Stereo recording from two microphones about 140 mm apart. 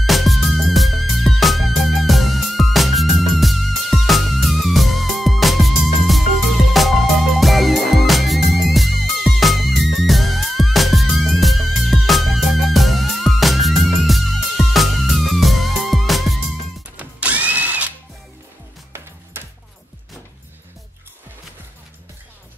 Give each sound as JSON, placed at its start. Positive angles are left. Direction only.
{"t": 0.0, "sound": "music", "side_deg": 0}
{"t": 16.9, "sound": "drill", "side_deg": -10}